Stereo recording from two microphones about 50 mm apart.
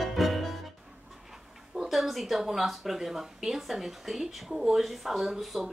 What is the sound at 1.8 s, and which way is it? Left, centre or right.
Speech, centre.